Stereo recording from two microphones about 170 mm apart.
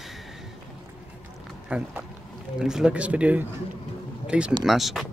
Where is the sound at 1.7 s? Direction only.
10° right (ahead or behind).